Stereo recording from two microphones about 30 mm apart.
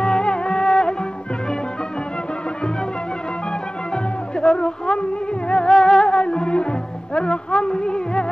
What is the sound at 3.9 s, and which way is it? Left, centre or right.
Music, left.